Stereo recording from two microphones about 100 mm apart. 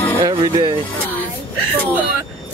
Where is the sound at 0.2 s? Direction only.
45° right (ahead or behind).